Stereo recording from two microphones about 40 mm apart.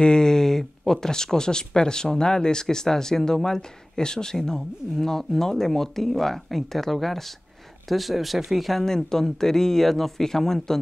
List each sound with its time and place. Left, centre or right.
0.0 s speech: centre
8.8 s speech: centre